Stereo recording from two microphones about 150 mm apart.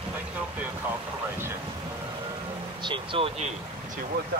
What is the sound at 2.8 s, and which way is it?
Vehicle, 30° right (ahead or behind).